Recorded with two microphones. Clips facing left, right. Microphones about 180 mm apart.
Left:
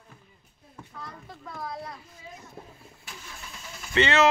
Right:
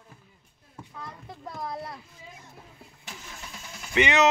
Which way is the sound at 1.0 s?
20° right (ahead or behind).